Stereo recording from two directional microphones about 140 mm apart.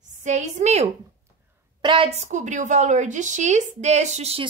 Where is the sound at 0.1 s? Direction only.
60° right (ahead or behind).